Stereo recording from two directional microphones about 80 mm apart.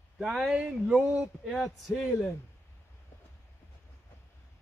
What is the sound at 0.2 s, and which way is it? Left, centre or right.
Speech, centre.